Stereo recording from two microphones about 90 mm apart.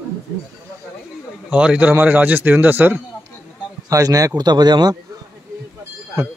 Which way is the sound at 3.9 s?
40° right (ahead or behind).